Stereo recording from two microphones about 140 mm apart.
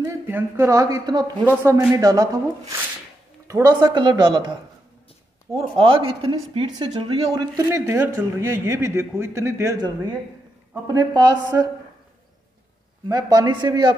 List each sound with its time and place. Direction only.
0.0 s a man's voice: 15° right (ahead or behind)
1.4 s a man's voice: 15° right (ahead or behind); by 4.4 s 30° right (ahead or behind)
5.6 s speech: 40° right (ahead or behind)
7.3 s a man's voice: 25° right (ahead or behind)
13.1 s a man's voice: 30° right (ahead or behind)